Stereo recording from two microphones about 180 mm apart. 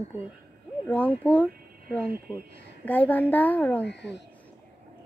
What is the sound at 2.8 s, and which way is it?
A woman's voice, 10° left (ahead or behind).